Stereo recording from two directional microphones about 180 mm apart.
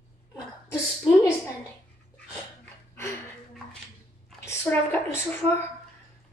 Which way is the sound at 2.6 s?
15° left (ahead or behind).